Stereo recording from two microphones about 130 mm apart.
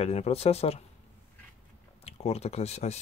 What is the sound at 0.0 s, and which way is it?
Speech, 55° left (ahead or behind).